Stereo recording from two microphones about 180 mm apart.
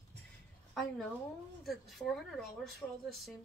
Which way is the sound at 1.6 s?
Centre (ahead or behind).